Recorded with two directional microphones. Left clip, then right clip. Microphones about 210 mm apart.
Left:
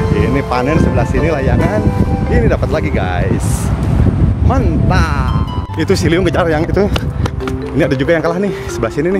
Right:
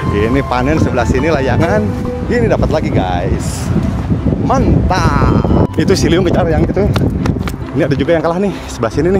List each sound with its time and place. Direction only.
0.1 s speech: 20° right (ahead or behind)
4.5 s speech: 20° right (ahead or behind)
6.3 s speech: 5° left (ahead or behind)